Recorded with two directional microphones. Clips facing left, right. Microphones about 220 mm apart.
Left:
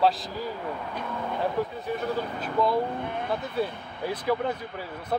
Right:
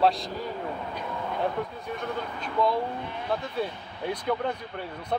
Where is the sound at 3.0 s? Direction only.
55° left (ahead or behind).